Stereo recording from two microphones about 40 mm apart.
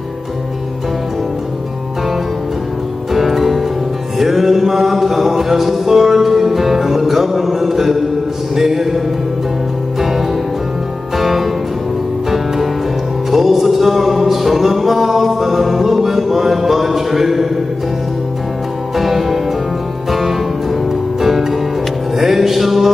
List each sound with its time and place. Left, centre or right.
3.1 s music: centre
8.5 s a sound: centre
9.9 s music: centre
13.3 s music: centre
18.9 s music: centre